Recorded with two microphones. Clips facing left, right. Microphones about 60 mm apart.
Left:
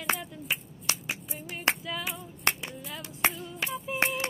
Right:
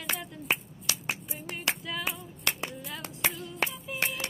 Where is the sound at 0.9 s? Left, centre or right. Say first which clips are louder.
Left 2 dB; left.